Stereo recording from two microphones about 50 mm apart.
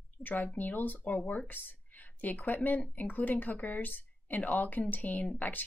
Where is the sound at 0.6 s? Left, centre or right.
Left.